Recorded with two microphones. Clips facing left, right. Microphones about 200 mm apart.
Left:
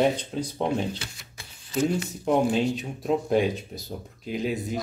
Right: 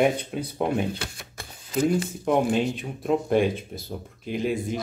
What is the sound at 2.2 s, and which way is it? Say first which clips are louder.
Speech: left 1 dB; 5° right (ahead or behind).